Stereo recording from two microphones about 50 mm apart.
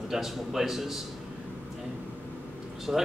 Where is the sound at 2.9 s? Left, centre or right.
Centre.